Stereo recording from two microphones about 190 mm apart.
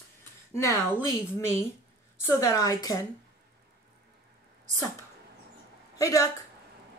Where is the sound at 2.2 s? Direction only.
15° left (ahead or behind).